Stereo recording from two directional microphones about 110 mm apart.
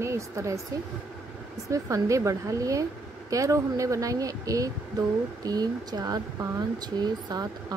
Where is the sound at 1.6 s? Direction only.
30° right (ahead or behind).